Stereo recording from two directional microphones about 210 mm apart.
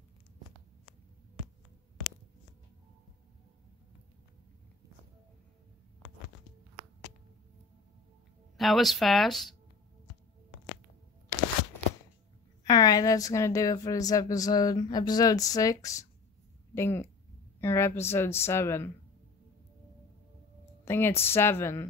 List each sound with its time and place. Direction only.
8.5 s speech: centre (ahead or behind)
12.6 s a woman's voice: 20° left (ahead or behind)
20.8 s a woman's voice: 10° left (ahead or behind)